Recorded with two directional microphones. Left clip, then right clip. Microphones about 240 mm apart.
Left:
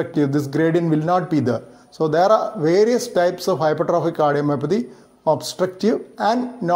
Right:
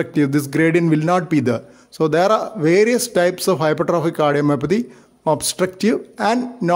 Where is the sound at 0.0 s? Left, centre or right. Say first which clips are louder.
Right 2 dB; right.